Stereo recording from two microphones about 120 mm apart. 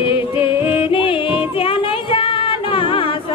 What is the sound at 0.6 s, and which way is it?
Music, 20° right (ahead or behind).